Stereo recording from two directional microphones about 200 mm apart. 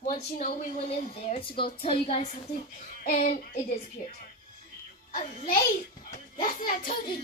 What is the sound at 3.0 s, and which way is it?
Music, 40° left (ahead or behind).